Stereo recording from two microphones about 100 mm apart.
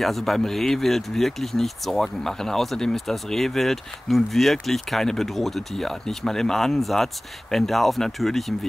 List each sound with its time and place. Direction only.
0.0 s speech: centre (ahead or behind)